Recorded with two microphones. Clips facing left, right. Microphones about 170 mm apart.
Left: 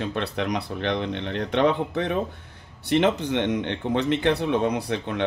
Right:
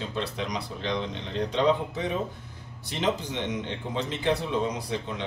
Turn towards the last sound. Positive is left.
turn(degrees=65)  # may be behind; listen again after turning